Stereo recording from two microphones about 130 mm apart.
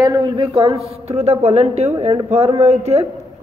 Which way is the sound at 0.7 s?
50° right (ahead or behind).